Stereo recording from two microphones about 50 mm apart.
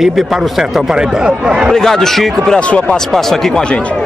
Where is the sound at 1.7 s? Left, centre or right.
Centre.